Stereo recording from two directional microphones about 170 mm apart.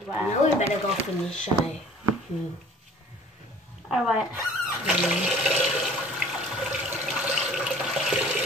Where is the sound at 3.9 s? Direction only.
5° right (ahead or behind).